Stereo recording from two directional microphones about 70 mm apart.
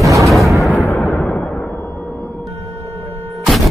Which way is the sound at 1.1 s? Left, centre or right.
Left.